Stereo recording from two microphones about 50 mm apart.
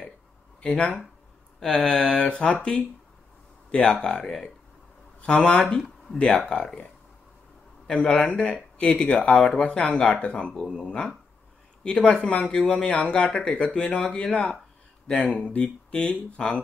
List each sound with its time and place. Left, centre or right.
0.6 s speech: left
1.6 s speech: centre
2.0 s speech: left
7.8 s a sound: left
8.3 s speech: left